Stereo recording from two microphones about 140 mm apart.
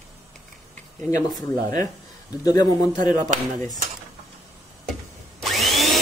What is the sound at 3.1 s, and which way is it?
Speech, 65° right (ahead or behind).